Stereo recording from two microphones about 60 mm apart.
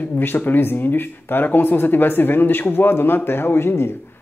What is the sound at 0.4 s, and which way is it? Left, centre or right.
Speech, left.